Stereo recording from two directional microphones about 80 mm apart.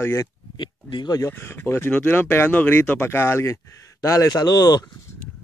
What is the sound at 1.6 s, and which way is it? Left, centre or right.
Speech, left.